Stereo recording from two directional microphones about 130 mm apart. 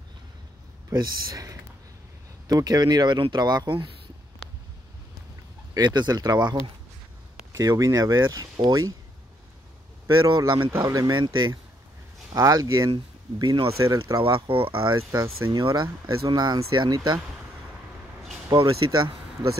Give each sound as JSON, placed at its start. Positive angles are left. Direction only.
{"t": 1.3, "sound": "speech", "side_deg": -25}
{"t": 5.8, "sound": "speech", "side_deg": -35}
{"t": 7.5, "sound": "speech", "side_deg": -25}
{"t": 10.0, "sound": "speech", "side_deg": -30}
{"t": 13.8, "sound": "speech", "side_deg": -20}
{"t": 14.1, "sound": "speech", "side_deg": -40}
{"t": 15.0, "sound": "speech", "side_deg": -25}
{"t": 15.6, "sound": "speech", "side_deg": -35}
{"t": 18.6, "sound": "speech", "side_deg": -40}